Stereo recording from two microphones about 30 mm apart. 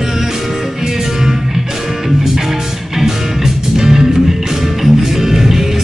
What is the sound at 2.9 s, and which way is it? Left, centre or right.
Music, centre.